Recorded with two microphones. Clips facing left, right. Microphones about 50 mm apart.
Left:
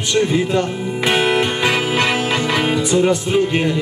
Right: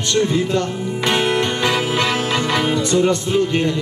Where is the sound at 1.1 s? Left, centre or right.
Centre.